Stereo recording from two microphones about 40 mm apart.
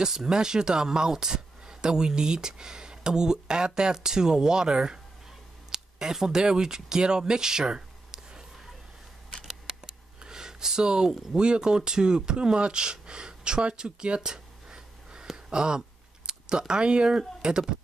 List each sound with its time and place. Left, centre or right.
0.0 s speech: centre
5.7 s a sound: centre
6.1 s speech: centre
9.7 s speech: centre
14.2 s a sound: centre
16.3 s speech: centre